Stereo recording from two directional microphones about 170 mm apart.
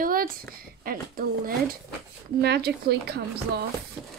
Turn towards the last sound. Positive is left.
turn(degrees=-70)  # may be behind; listen again after turning